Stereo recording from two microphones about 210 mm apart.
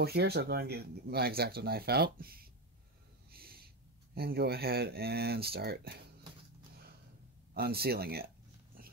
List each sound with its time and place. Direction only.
0.0 s speech: 50° right (ahead or behind)
7.5 s speech: 50° right (ahead or behind)